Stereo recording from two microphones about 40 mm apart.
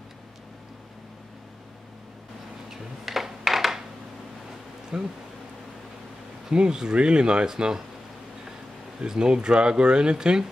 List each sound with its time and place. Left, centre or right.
2.7 s a sound: centre
4.9 s speech: centre
6.5 s speech: right
9.0 s speech: centre